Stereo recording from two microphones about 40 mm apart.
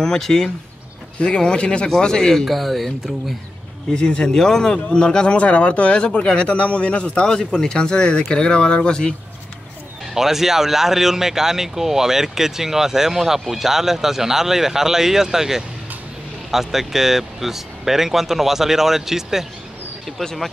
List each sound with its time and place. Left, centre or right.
0.0 s speech: centre
2.4 s speech: centre
3.9 s speech: left
10.1 s speech: centre
20.2 s speech: centre